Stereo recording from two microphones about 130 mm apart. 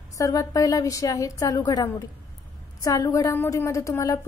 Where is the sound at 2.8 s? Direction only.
25° left (ahead or behind).